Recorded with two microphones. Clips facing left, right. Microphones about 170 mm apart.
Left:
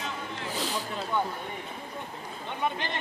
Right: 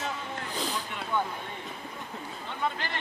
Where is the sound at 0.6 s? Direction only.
Centre (ahead or behind).